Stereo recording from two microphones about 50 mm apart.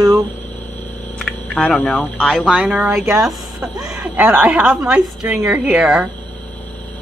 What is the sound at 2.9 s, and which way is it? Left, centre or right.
Speech, right.